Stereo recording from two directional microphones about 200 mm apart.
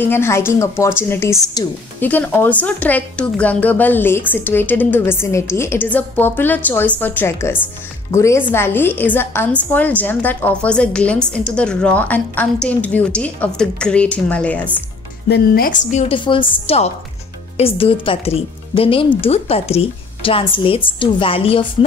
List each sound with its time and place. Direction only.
0.0 s a woman's voice: 10° left (ahead or behind)
15.2 s a woman's voice: 50° left (ahead or behind); by 21.6 s 25° left (ahead or behind)